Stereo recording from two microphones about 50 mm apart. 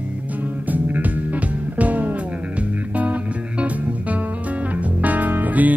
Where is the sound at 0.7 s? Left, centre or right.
Right.